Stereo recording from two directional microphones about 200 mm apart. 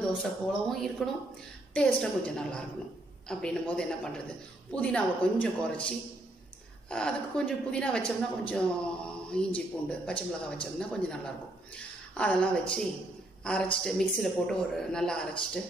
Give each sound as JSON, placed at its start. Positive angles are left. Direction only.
{"t": 0.0, "sound": "a woman's voice", "side_deg": 0}